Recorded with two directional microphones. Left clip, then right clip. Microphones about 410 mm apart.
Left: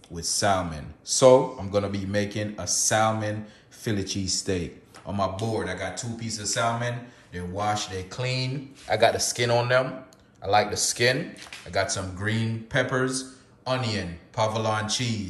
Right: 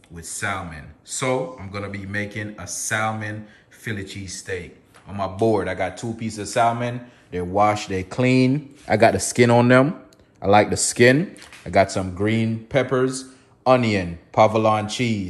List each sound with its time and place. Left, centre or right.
0.1 s speech: centre
5.5 s speech: centre